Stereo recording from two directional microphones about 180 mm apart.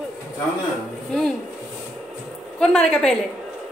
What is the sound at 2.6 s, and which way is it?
Speech, 5° left (ahead or behind).